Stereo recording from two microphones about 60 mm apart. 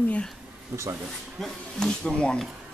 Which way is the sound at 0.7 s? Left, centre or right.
Right.